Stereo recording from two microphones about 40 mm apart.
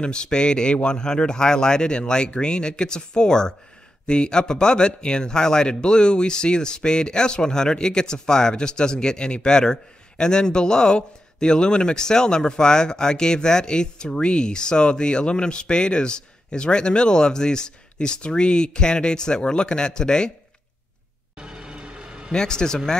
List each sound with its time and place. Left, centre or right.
0.0 s a man's voice: left
21.4 s music: right
22.3 s speech: centre